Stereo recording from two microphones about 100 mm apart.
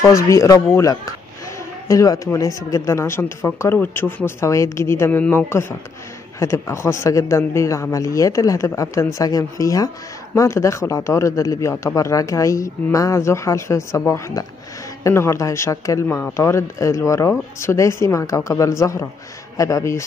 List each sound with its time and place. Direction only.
0.3 s speech: 30° left (ahead or behind)